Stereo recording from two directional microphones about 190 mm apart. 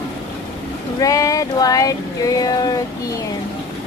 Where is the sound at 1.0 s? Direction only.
15° left (ahead or behind).